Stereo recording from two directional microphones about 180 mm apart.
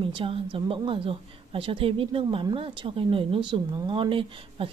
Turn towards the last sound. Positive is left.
turn(degrees=-30)  # may be behind; listen again after turning